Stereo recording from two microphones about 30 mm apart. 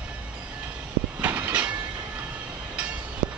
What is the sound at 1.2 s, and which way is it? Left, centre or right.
Train, right.